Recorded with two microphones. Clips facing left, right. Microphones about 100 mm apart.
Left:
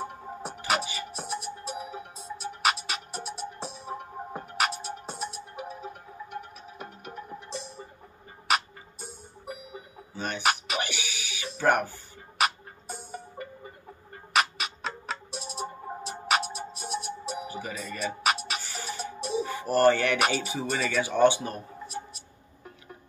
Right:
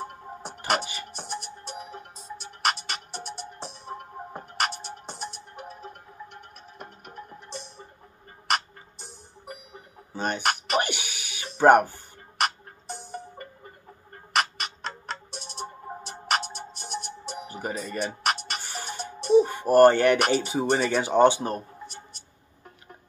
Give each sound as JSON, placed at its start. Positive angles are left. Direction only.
{"t": 0.0, "sound": "music", "side_deg": 0}
{"t": 10.1, "sound": "speech", "side_deg": -50}
{"t": 10.4, "sound": "music", "side_deg": 0}
{"t": 10.8, "sound": "a sound", "side_deg": -50}
{"t": 11.7, "sound": "speech", "side_deg": -55}
{"t": 12.4, "sound": "music", "side_deg": 0}
{"t": 17.5, "sound": "music", "side_deg": -50}
{"t": 18.2, "sound": "music", "side_deg": 0}
{"t": 18.6, "sound": "music", "side_deg": -50}
{"t": 18.9, "sound": "music", "side_deg": 0}
{"t": 19.4, "sound": "speech", "side_deg": -50}
{"t": 21.2, "sound": "speech", "side_deg": -50}
{"t": 21.8, "sound": "music", "side_deg": 0}